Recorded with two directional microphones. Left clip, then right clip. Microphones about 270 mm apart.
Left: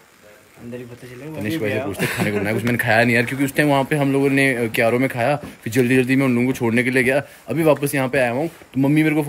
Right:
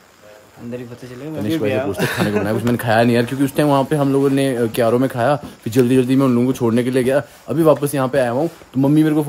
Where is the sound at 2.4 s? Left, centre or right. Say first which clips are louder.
Right 1 dB; centre.